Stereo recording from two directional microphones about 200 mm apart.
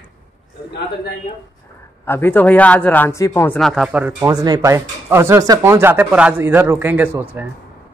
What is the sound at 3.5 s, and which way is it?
Speech, centre (ahead or behind).